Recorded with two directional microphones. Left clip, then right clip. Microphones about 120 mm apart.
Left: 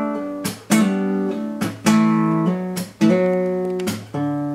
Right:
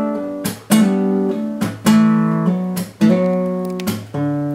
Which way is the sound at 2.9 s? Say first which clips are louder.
Right 1 dB; 5° left (ahead or behind).